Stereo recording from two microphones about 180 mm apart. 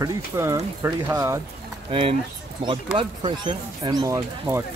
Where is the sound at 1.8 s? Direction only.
30° right (ahead or behind); by 4.6 s 15° right (ahead or behind).